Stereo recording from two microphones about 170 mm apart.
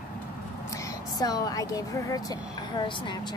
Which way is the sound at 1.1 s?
20° left (ahead or behind).